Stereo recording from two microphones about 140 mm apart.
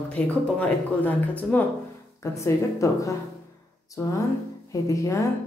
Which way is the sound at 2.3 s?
20° left (ahead or behind).